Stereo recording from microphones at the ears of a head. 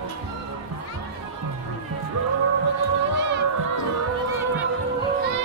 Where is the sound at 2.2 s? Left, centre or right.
Right.